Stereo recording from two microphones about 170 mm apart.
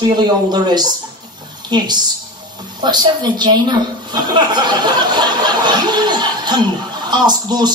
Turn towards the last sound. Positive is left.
turn(degrees=-25)  # may be behind; listen again after turning